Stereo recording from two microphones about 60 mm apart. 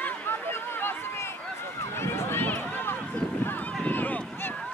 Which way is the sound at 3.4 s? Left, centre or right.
Left.